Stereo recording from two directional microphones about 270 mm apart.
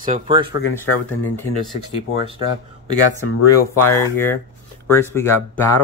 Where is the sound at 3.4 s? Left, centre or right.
Centre.